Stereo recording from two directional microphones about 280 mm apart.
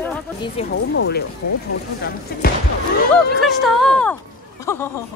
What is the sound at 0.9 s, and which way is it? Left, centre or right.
Speech, left.